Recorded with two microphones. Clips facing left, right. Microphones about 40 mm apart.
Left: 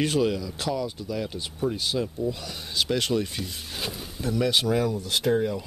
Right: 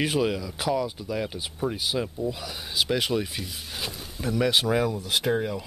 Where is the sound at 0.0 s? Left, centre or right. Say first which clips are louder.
Left 1 dB; centre.